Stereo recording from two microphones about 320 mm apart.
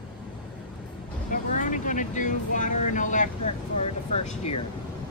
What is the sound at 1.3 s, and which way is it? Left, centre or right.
Vehicle, left.